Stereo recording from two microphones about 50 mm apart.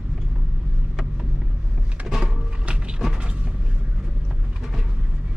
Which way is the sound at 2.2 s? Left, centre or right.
Right.